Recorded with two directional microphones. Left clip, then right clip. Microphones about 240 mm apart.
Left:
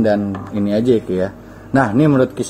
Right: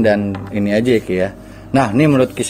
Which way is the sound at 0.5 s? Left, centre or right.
Right.